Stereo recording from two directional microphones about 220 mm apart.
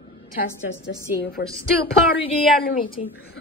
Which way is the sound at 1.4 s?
45° left (ahead or behind).